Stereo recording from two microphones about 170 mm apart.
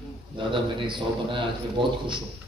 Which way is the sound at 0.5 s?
30° right (ahead or behind).